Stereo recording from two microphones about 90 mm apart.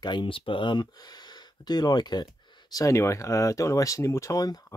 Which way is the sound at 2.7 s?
35° left (ahead or behind).